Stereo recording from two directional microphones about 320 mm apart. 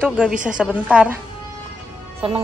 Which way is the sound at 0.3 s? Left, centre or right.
Right.